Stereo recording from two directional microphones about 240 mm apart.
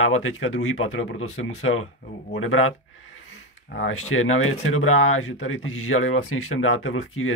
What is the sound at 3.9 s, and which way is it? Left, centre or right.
Speech, left.